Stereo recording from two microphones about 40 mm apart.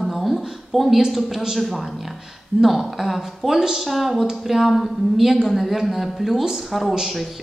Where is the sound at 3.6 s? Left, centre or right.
Centre.